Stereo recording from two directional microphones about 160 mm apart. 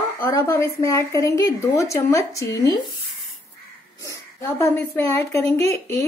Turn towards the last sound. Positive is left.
turn(degrees=20)  # may be behind; listen again after turning